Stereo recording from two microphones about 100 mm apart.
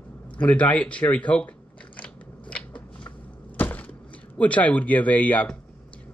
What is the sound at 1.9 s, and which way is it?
Biting, 10° left (ahead or behind).